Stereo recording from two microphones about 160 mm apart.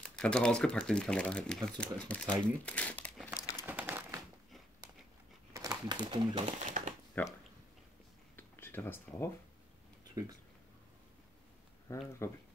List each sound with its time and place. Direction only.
0.0 s speech: 5° left (ahead or behind)
3.3 s crumpling: 25° left (ahead or behind)
3.6 s crumpling: 10° right (ahead or behind)
5.5 s speech: 25° right (ahead or behind)
6.4 s speech: 50° right (ahead or behind)
7.2 s speech: 10° left (ahead or behind)
8.4 s a sound: 15° left (ahead or behind)
10.2 s speech: 20° right (ahead or behind)
11.9 s speech: 20° left (ahead or behind)